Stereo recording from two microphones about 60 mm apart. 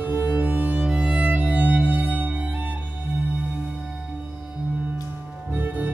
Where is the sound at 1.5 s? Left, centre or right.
Right.